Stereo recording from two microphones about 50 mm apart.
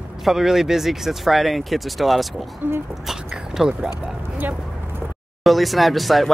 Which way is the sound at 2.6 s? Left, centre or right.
Right.